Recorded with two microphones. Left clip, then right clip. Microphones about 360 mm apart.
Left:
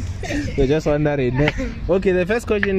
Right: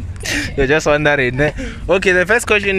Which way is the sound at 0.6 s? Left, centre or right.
Right.